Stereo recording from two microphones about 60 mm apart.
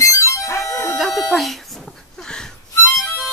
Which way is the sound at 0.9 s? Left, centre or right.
Centre.